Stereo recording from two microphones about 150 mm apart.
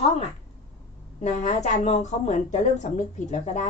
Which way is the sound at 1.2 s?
50° left (ahead or behind).